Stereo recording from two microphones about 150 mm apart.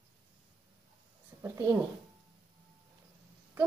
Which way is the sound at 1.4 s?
20° right (ahead or behind).